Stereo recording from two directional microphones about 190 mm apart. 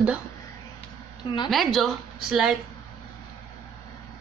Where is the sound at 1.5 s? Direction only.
Centre (ahead or behind).